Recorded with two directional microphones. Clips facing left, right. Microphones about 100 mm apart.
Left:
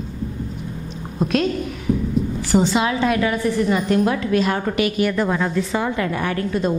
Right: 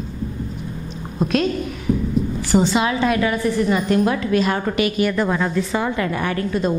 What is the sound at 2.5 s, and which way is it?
A woman's voice, 10° right (ahead or behind).